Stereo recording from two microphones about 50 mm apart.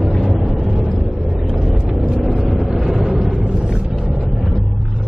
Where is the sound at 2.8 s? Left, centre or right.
Centre.